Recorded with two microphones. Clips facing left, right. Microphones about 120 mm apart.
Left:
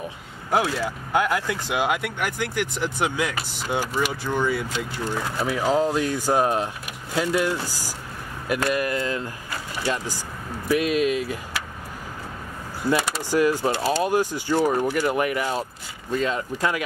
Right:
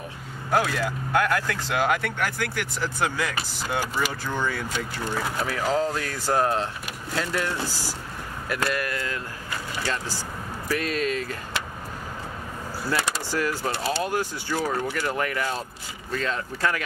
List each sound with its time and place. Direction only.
0.5 s speech: 15° left (ahead or behind)
10.7 s speech: 10° left (ahead or behind)
12.9 s speech: 15° left (ahead or behind)